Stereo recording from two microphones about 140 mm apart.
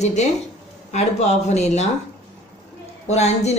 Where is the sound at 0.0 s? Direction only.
55° left (ahead or behind).